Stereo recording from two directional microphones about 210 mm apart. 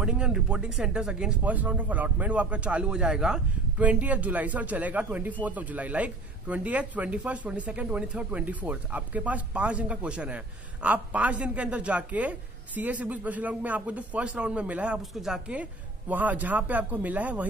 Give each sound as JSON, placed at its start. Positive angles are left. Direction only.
{"t": 0.0, "sound": "a man's voice", "side_deg": -5}